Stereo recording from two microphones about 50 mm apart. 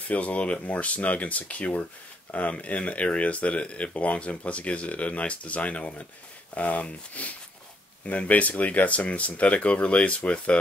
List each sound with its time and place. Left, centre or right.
0.1 s speech: left